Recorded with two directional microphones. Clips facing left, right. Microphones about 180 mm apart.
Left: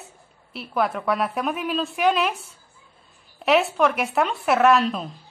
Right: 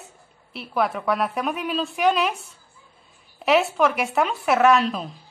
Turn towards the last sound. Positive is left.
turn(degrees=0)  # may be behind; listen again after turning